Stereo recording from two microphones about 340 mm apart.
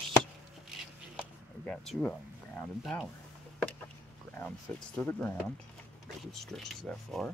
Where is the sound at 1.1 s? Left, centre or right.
Centre.